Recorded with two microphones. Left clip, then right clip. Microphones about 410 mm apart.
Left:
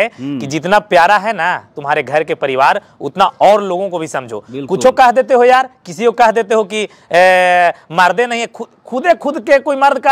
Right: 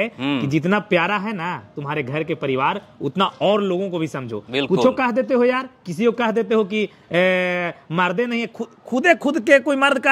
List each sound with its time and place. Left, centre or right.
0.4 s speech: left
8.5 s speech: left